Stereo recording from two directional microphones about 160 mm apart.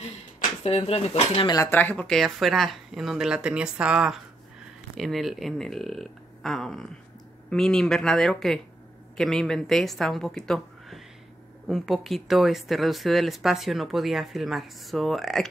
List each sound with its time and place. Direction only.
0.0 s speech: 40° left (ahead or behind)
1.7 s speech: 10° left (ahead or behind)